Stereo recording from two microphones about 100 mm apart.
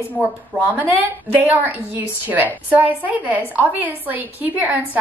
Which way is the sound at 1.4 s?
15° right (ahead or behind).